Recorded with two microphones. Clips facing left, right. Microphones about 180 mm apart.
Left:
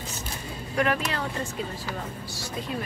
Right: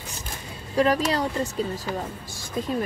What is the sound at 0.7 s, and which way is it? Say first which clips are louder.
Speech: right 5 dB; 35° right (ahead or behind).